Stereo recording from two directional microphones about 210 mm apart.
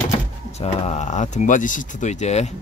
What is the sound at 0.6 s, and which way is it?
Speech, 30° left (ahead or behind).